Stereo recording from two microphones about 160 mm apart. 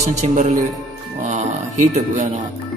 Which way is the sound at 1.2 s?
45° right (ahead or behind).